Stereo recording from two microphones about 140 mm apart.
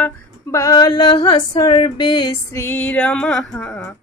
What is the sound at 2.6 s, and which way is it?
Music, 10° left (ahead or behind).